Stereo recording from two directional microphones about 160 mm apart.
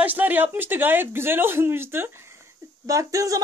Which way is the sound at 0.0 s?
10° right (ahead or behind).